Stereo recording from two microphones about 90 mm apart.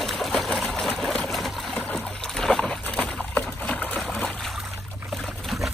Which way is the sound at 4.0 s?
5° left (ahead or behind).